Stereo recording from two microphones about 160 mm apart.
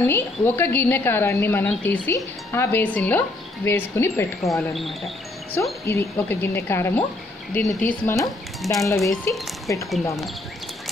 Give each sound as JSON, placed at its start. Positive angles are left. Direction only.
{"t": 0.0, "sound": "a woman's voice", "side_deg": 15}
{"t": 4.4, "sound": "speech", "side_deg": 0}
{"t": 5.6, "sound": "a woman's voice", "side_deg": 15}